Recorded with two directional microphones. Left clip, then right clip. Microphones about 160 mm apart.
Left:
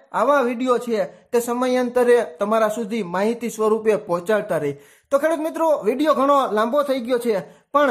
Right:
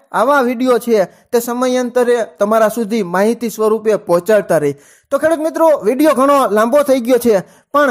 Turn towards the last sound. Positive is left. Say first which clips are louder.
# right 5 dB
turn(degrees=-45)  # may be behind; listen again after turning